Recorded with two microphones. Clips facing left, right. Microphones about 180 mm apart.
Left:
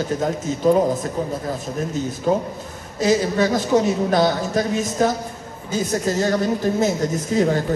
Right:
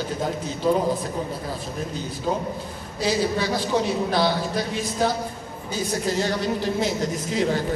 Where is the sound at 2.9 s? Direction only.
45° left (ahead or behind).